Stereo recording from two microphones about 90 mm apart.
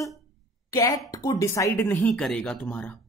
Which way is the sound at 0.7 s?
40° left (ahead or behind).